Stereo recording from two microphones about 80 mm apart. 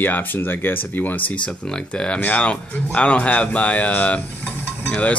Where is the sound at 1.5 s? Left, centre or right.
Centre.